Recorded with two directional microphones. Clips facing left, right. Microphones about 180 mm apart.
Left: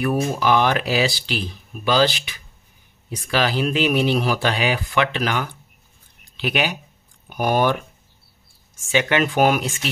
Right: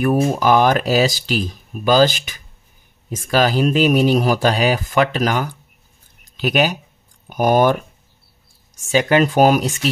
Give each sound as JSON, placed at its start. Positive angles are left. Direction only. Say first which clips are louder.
{"t": 0.0, "sound": "speech", "louder": "right 4 dB", "side_deg": -45}